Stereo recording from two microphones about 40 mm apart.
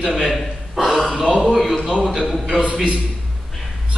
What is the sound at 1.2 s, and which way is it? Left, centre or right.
Speech, centre.